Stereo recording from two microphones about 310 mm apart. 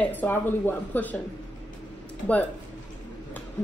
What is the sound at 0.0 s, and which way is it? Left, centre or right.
Speech, centre.